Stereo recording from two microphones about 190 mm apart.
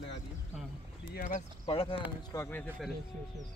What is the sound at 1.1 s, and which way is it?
Speech, 45° left (ahead or behind).